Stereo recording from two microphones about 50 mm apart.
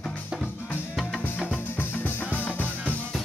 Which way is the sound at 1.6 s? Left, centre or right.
Left.